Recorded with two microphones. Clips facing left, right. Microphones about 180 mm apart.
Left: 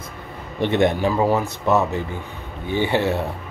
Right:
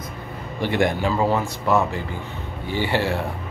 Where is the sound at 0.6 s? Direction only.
25° left (ahead or behind).